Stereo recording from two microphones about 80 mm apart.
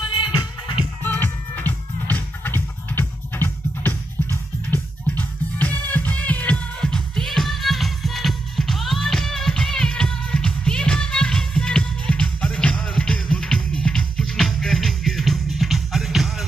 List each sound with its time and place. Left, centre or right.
0.2 s music: left
1.0 s music: left; by 16.4 s centre